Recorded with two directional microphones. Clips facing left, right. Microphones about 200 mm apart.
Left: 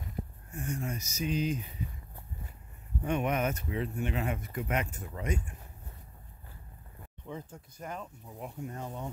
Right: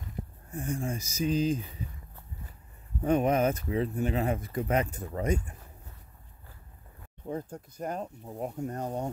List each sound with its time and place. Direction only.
0.5 s speech: 35° right (ahead or behind)
3.0 s speech: 35° right (ahead or behind)
7.5 s speech: 40° right (ahead or behind)